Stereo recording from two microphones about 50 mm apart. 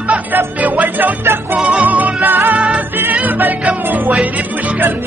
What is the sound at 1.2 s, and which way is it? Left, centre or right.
Music, right.